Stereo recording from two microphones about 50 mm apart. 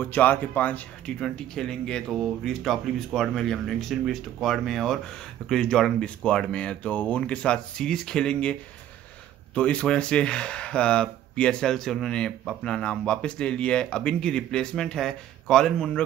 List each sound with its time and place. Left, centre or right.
0.0 s speech: left
1.2 s speech: centre